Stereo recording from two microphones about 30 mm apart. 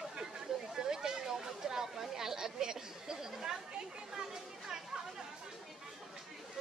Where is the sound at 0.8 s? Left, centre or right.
Right.